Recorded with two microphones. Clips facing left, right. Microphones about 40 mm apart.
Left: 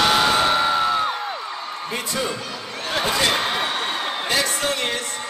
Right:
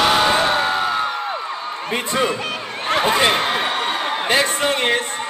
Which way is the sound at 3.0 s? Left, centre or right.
Right.